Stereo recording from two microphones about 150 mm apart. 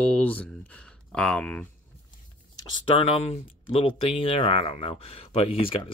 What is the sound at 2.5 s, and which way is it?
Speech, 35° left (ahead or behind).